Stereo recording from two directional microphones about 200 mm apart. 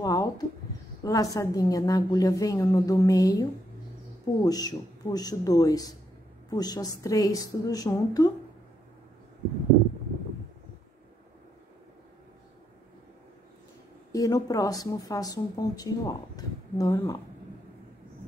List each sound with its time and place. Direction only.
0.0 s a sound: 20° left (ahead or behind)
1.0 s a woman's voice: 15° left (ahead or behind)
14.1 s speech: 15° left (ahead or behind)